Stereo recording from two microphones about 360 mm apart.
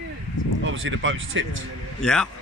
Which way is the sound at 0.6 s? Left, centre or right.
Right.